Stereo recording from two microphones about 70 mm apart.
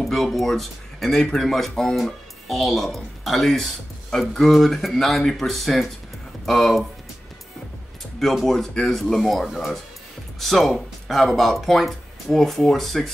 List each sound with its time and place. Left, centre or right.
0.0 s speech: centre
8.2 s speech: centre